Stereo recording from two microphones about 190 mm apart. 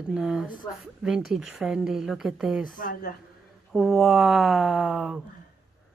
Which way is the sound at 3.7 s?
Centre (ahead or behind).